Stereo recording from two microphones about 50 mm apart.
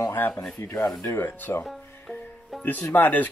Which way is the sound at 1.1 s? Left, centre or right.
Left.